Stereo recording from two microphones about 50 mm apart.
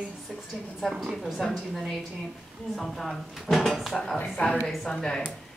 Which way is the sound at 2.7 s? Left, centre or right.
Centre.